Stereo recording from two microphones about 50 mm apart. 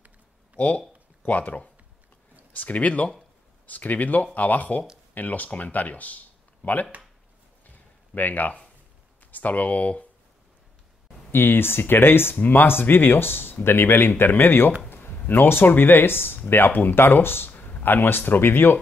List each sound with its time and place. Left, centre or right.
0.6 s speech: left
7.6 s a sound: left
9.2 s speech: left
11.3 s speech: left
14.9 s a sound: left
15.7 s speech: left
17.5 s speech: left